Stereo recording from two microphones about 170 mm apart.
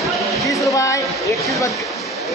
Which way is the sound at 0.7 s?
20° left (ahead or behind).